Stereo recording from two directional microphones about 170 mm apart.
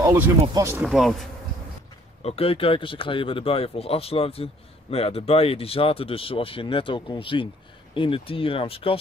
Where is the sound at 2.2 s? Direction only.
35° left (ahead or behind).